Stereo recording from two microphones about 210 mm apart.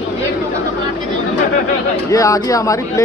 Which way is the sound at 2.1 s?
15° left (ahead or behind).